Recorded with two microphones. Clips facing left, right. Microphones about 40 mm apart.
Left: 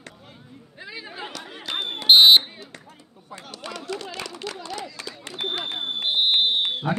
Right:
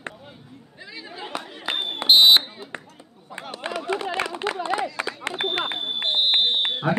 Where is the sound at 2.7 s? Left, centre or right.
Right.